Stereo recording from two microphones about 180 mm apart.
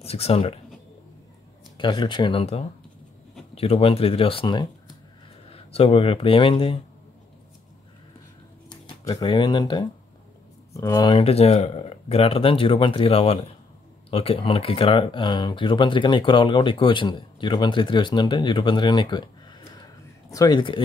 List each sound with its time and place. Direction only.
0.0 s speech: 35° left (ahead or behind)
1.8 s speech: 25° left (ahead or behind)
8.6 s speech: 20° left (ahead or behind)
11.1 s speech: 35° left (ahead or behind)
20.3 s speech: 25° left (ahead or behind)